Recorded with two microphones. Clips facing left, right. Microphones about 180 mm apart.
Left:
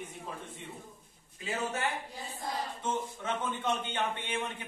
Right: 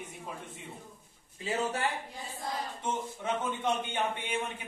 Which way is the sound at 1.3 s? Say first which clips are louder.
Right 3 dB; 30° right (ahead or behind).